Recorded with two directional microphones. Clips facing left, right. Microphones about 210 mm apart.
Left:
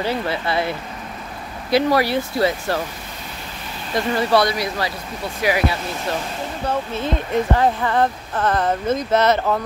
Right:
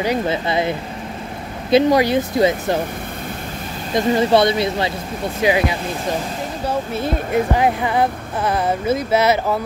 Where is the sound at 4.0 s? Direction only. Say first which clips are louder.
Right 3 dB; 20° right (ahead or behind).